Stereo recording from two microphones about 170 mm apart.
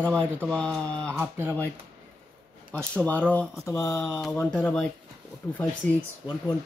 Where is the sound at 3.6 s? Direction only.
20° left (ahead or behind).